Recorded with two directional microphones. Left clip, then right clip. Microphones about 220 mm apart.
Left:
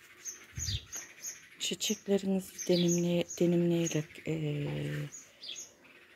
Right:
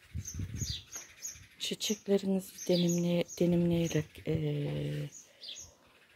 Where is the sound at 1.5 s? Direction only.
10° right (ahead or behind).